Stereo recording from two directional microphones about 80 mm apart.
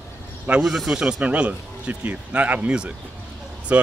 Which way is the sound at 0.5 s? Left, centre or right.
Centre.